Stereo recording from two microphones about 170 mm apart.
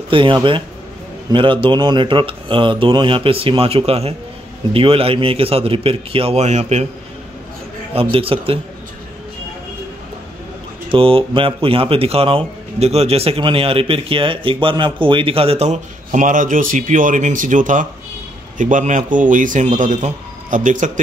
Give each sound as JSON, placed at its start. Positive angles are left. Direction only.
{"t": 0.1, "sound": "a man's voice", "side_deg": -30}
{"t": 7.9, "sound": "a man's voice", "side_deg": -35}
{"t": 10.9, "sound": "a man's voice", "side_deg": -30}